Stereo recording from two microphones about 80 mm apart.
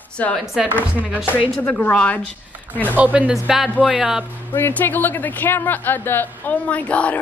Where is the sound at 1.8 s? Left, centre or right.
Centre.